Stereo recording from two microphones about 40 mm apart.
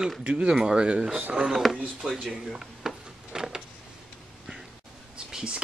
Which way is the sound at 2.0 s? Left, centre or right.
Centre.